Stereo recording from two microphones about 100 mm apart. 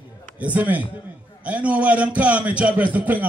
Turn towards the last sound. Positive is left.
turn(degrees=-15)  # may be behind; listen again after turning